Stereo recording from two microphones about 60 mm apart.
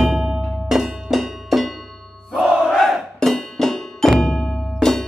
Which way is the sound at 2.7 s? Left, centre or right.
Centre.